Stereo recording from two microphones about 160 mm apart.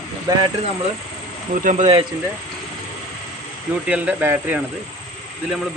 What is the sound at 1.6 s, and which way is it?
Speech, 50° right (ahead or behind).